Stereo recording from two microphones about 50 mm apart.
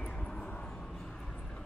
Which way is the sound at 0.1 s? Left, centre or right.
Centre.